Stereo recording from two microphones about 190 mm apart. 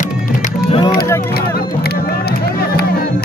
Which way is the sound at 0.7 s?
25° left (ahead or behind).